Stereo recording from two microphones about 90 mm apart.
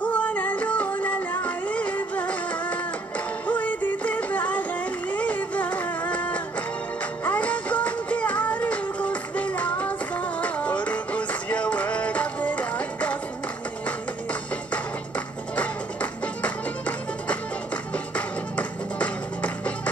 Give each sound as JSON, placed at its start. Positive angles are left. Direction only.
{"t": 0.0, "sound": "music", "side_deg": 15}
{"t": 5.1, "sound": "a sound", "side_deg": 15}
{"t": 7.2, "sound": "music", "side_deg": 15}
{"t": 14.7, "sound": "music", "side_deg": 15}